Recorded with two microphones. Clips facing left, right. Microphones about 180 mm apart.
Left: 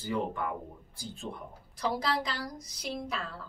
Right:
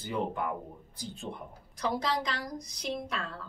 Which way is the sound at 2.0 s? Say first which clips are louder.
Even; centre (ahead or behind).